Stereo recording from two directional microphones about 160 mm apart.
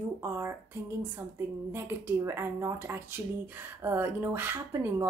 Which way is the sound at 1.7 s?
15° right (ahead or behind).